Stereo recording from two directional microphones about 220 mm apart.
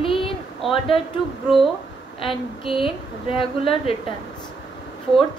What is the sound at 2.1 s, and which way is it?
Speech, 25° left (ahead or behind).